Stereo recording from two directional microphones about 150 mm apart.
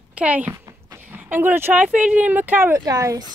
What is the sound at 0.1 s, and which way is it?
Speech, 10° right (ahead or behind).